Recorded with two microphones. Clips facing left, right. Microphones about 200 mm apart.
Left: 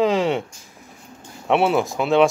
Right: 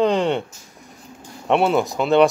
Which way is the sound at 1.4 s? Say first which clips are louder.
Right 1 dB; centre (ahead or behind).